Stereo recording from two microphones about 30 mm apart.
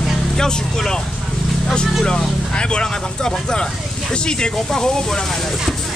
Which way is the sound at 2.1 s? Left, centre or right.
Left.